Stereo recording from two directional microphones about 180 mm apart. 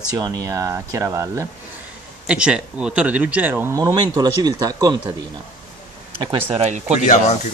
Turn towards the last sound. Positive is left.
turn(degrees=40)  # may be behind; listen again after turning